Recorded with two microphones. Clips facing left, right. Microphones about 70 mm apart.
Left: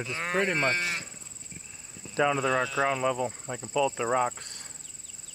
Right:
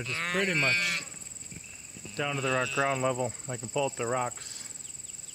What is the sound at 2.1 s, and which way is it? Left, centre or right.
Speech, left.